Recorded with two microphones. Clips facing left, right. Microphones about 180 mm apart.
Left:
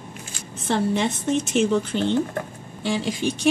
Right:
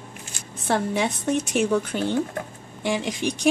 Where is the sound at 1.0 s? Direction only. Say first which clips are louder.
Left 1 dB; 10° right (ahead or behind).